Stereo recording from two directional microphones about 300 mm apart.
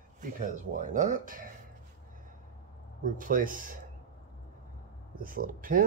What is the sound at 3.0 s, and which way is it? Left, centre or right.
Speech, right.